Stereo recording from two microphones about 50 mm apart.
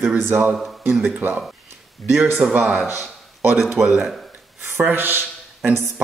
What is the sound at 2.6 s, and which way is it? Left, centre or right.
Speech, centre.